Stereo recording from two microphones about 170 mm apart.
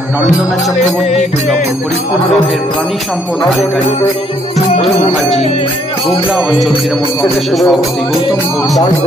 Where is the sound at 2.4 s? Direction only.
Centre (ahead or behind).